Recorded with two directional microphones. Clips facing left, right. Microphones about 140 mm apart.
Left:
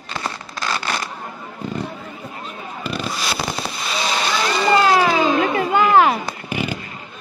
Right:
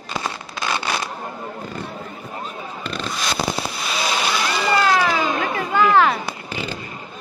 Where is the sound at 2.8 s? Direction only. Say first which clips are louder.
Left 2 dB; 5° left (ahead or behind).